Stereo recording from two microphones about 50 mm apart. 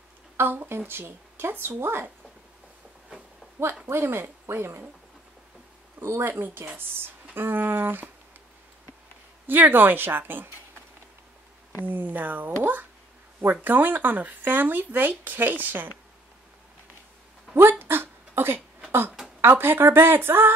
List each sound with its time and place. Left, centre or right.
0.4 s speech: right
3.8 s speech: right
5.9 s speech: right
9.5 s speech: right
11.8 s speech: right
17.6 s speech: right